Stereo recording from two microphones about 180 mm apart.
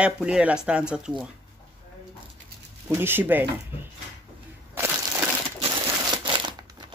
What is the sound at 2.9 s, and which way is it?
Speech, 10° right (ahead or behind).